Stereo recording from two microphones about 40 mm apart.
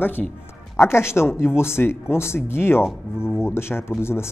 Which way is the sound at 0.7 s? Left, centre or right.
Left.